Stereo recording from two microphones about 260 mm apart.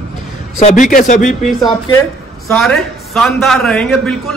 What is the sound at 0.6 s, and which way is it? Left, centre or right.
Speech, left.